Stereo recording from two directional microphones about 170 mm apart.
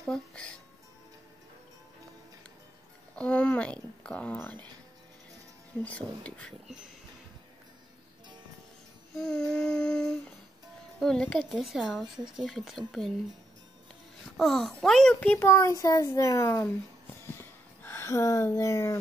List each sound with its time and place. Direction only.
0.0 s speech: 5° left (ahead or behind)
3.2 s a child's voice: 5° left (ahead or behind)
5.8 s a child's voice: 5° left (ahead or behind)
9.1 s a sound: 5° left (ahead or behind)
11.0 s speech: 5° left (ahead or behind)
14.3 s a child's voice: centre (ahead or behind)
17.4 s a sound: 15° left (ahead or behind)